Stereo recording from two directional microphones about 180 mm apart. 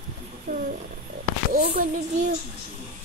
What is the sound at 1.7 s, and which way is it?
Speech, 45° right (ahead or behind).